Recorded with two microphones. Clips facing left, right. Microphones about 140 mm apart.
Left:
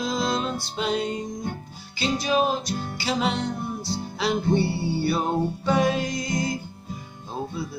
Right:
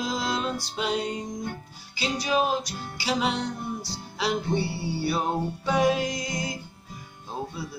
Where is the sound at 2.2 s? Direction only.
5° right (ahead or behind).